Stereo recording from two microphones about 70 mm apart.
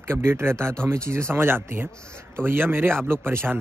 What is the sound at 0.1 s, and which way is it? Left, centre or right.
Speech, right.